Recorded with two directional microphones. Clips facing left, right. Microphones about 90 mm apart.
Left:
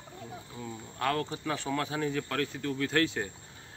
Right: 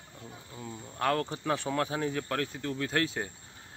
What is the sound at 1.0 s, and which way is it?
A man's voice, 30° right (ahead or behind).